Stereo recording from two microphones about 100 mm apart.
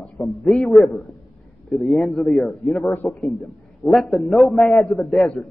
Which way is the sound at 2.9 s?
25° left (ahead or behind).